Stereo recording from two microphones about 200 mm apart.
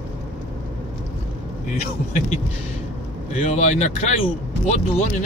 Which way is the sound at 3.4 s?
35° left (ahead or behind).